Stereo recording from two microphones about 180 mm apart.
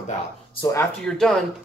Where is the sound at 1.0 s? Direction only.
5° left (ahead or behind).